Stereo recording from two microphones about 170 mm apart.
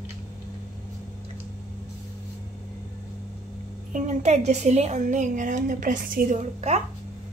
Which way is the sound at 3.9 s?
40° right (ahead or behind).